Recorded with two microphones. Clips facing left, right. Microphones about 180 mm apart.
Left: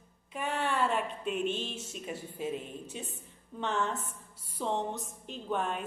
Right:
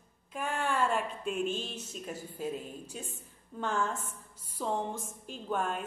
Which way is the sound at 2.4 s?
Centre (ahead or behind).